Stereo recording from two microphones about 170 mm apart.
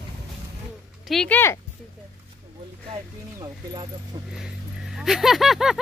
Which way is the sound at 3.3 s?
25° right (ahead or behind).